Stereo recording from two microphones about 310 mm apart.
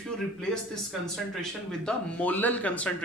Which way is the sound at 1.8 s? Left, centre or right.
Centre.